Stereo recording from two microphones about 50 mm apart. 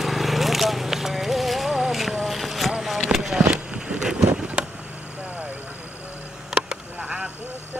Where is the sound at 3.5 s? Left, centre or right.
Centre.